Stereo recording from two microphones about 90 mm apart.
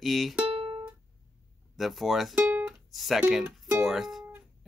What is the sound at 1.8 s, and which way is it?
Speech, centre (ahead or behind).